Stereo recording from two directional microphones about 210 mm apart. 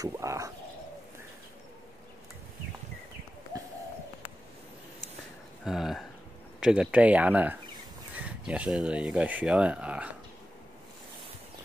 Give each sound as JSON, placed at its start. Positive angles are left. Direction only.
{"t": 0.0, "sound": "speech", "side_deg": -15}
{"t": 3.5, "sound": "a sound", "side_deg": -15}
{"t": 5.7, "sound": "speech", "side_deg": 0}